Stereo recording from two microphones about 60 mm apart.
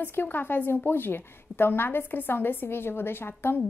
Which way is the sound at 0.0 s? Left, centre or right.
Left.